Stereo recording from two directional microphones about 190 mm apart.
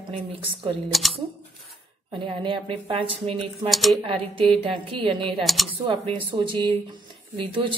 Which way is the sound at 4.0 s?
30° right (ahead or behind).